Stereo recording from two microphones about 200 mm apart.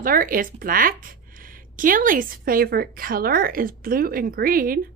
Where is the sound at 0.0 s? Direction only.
45° right (ahead or behind).